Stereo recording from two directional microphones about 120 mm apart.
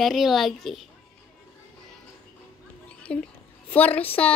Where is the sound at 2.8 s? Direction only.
10° left (ahead or behind).